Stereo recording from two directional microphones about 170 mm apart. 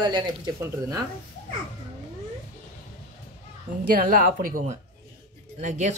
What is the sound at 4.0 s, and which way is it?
Speech, 55° right (ahead or behind).